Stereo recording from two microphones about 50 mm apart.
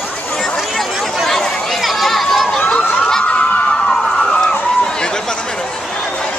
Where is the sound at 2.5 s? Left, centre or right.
Centre.